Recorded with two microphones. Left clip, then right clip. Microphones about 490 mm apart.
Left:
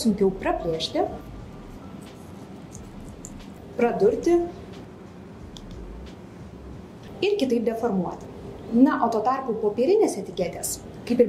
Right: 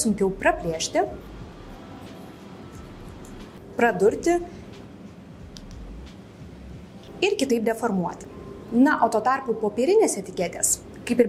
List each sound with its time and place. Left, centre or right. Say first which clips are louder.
0.0 s a woman's voice: right 1 dB; right
3.7 s a woman's voice: right 1 dB; right
7.2 s a woman's voice: even; right